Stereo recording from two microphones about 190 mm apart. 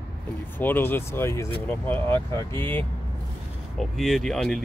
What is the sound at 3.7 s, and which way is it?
Speech, centre (ahead or behind).